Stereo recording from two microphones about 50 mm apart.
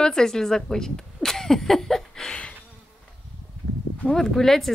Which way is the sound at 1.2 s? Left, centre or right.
Centre.